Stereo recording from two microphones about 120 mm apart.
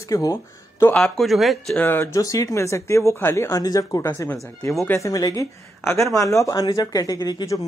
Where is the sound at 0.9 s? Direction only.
Centre (ahead or behind).